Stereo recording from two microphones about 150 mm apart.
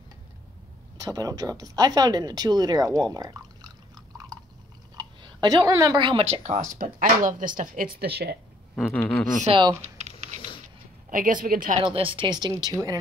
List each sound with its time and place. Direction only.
1.0 s speech: 25° right (ahead or behind)
3.9 s a sound: 25° right (ahead or behind)
4.9 s clicking: 30° right (ahead or behind)
5.7 s speech: 25° right (ahead or behind); by 8.4 s 90° right
8.7 s a sound: 10° left (ahead or behind)
9.8 s typing: 50° right (ahead or behind)
11.1 s speech: 65° right (ahead or behind)
11.8 s speech: 35° right (ahead or behind)